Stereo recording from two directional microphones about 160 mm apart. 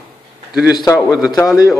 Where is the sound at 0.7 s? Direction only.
20° left (ahead or behind).